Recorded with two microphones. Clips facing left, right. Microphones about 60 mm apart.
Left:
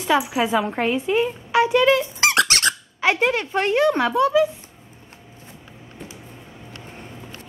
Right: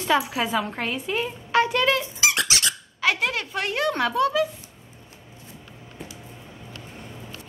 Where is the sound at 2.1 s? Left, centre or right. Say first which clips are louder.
Left 5 dB; left.